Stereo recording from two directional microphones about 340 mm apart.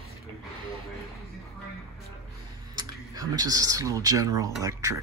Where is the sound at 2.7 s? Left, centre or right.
Centre.